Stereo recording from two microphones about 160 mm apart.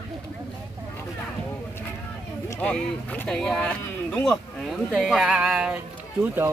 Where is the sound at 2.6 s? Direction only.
10° left (ahead or behind); by 6.5 s 10° right (ahead or behind).